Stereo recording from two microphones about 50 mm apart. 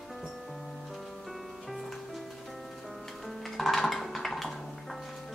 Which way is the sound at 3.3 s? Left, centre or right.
Centre.